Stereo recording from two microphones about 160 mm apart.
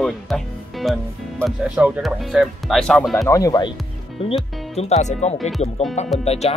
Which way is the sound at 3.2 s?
20° left (ahead or behind).